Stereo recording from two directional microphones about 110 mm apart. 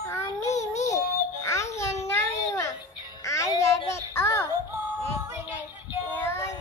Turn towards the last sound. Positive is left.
turn(degrees=25)  # may be behind; listen again after turning